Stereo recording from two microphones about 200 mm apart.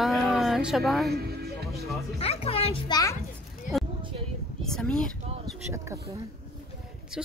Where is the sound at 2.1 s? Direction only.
30° left (ahead or behind).